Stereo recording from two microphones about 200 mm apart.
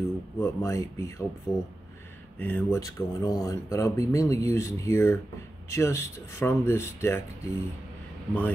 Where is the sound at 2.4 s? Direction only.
10° left (ahead or behind).